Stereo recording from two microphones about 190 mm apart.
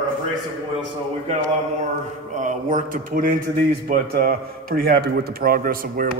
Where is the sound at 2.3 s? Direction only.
40° right (ahead or behind).